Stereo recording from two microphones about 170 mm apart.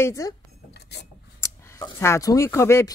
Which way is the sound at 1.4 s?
20° left (ahead or behind).